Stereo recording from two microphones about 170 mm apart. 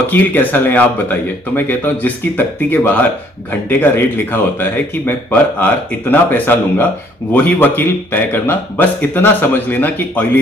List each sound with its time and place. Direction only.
0.1 s speech: 10° left (ahead or behind)